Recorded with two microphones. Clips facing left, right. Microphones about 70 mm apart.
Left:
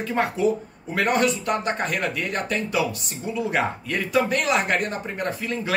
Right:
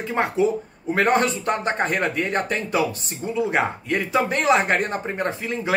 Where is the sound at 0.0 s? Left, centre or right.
Right.